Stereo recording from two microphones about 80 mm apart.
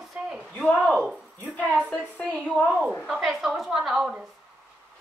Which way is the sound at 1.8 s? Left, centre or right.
Centre.